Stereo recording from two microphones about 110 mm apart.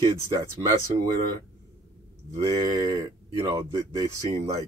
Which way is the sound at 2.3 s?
35° right (ahead or behind).